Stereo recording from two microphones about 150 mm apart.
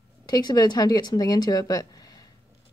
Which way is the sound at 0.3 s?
25° left (ahead or behind).